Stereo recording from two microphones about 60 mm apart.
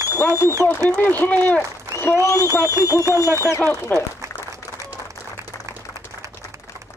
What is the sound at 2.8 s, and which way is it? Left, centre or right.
Speech, left.